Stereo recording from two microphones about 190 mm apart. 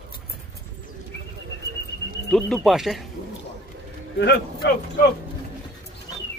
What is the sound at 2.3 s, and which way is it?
Speech, 5° left (ahead or behind).